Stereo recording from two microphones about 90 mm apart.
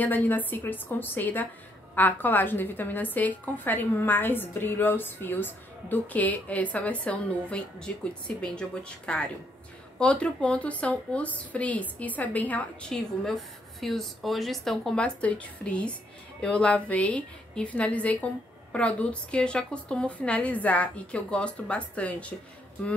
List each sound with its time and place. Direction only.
0.0 s a woman's voice: 20° left (ahead or behind)
12.9 s a woman's voice: 5° left (ahead or behind)